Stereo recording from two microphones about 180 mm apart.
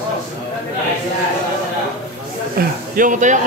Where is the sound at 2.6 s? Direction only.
55° right (ahead or behind).